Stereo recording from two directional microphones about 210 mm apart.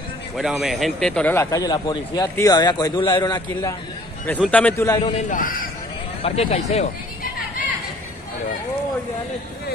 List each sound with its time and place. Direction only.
0.4 s a man's voice: centre (ahead or behind); by 3.7 s 20° left (ahead or behind)
4.5 s a man's voice: 5° left (ahead or behind)
5.3 s speech: 40° left (ahead or behind)
6.2 s speech: 30° left (ahead or behind)